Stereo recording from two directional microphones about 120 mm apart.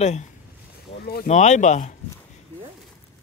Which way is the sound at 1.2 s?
75° left (ahead or behind).